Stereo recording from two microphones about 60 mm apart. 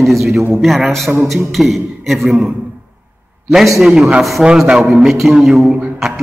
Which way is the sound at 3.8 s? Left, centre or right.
Centre.